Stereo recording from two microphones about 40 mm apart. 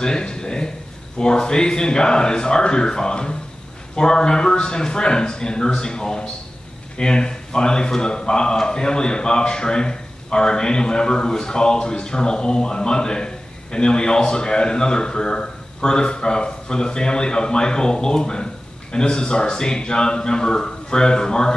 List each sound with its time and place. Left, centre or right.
0.0 s a man's voice: left